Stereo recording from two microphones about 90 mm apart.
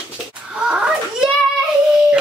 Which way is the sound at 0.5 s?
10° right (ahead or behind).